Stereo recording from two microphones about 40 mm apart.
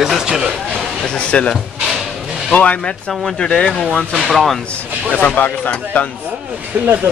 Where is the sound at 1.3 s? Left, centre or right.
Left.